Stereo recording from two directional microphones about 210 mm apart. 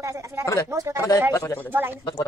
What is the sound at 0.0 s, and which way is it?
Speech, 15° right (ahead or behind).